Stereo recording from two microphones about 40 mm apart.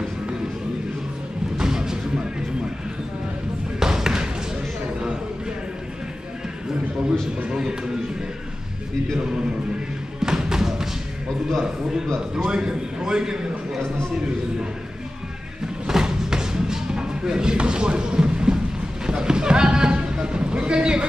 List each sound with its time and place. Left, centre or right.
1.6 s music: centre
3.8 s a sound: centre
10.2 s music: centre
12.4 s a man's voice: centre
15.9 s chopping: centre
19.0 s a sound: centre